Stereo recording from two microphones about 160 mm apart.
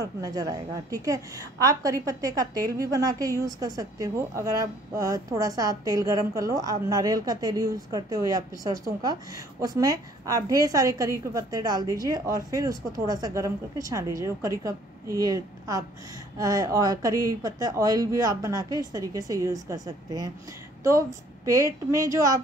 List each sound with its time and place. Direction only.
0.0 s a woman's voice: 25° right (ahead or behind)
21.9 s a woman's voice: 20° right (ahead or behind)